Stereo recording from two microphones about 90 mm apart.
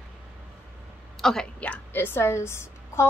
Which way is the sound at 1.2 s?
5° left (ahead or behind).